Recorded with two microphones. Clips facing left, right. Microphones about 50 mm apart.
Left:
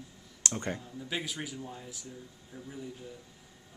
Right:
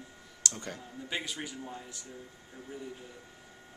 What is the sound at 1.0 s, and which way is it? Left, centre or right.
Speech, centre.